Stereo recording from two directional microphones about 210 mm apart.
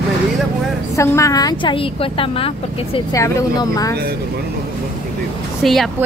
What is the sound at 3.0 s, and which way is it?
Speech, 15° left (ahead or behind).